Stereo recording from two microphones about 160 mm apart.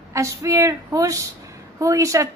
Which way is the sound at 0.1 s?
20° right (ahead or behind).